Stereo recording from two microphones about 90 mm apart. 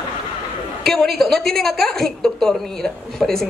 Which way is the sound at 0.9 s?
5° left (ahead or behind).